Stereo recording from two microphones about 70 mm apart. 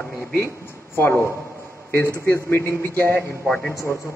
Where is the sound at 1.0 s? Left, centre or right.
Left.